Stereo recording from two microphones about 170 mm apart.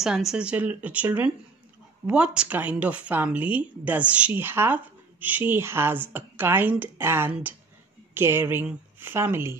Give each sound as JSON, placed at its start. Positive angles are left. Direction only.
{"t": 0.0, "sound": "a woman's voice", "side_deg": 0}